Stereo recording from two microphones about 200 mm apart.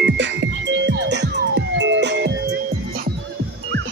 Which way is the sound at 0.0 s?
60° right (ahead or behind).